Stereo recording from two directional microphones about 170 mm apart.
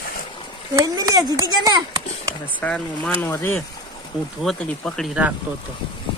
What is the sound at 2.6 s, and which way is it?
Speech, 5° left (ahead or behind).